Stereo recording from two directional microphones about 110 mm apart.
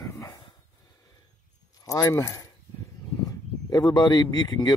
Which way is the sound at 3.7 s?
35° left (ahead or behind).